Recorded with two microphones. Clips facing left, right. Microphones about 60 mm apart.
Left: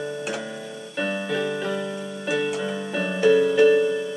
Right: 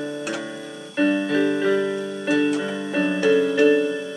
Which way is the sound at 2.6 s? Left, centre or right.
Centre.